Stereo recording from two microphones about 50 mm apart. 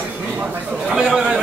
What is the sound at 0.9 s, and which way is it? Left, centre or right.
Speech, centre.